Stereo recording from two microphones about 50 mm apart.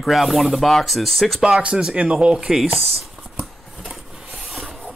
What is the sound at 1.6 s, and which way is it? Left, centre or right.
Speech, right.